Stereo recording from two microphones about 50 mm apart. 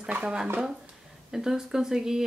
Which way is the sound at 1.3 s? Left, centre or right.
Centre.